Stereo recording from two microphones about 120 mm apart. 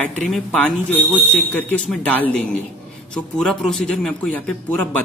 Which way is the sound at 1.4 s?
10° left (ahead or behind).